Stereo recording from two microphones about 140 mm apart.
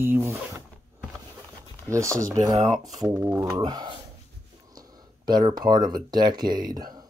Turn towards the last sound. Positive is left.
turn(degrees=-30)  # may be behind; listen again after turning